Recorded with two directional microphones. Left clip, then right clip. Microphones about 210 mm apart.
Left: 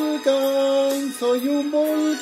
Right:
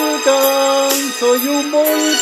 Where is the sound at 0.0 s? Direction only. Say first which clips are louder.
Right 7 dB; 30° right (ahead or behind).